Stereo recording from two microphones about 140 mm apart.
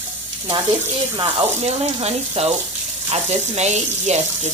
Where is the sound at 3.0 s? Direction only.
50° right (ahead or behind).